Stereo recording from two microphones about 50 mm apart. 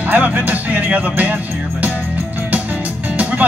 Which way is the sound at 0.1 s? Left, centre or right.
Right.